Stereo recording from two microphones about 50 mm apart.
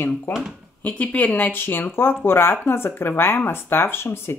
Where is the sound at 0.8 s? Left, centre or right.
Left.